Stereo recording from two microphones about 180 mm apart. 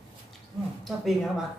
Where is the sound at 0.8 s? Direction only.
Centre (ahead or behind).